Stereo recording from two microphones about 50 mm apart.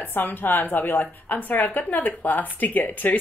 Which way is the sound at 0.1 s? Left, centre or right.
Left.